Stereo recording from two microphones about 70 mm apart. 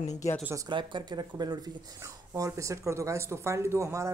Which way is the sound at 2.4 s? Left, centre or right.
Right.